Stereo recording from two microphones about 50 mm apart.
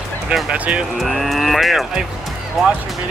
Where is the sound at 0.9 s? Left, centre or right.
Centre.